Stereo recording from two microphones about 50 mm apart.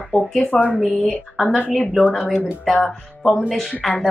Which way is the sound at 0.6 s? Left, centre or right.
Right.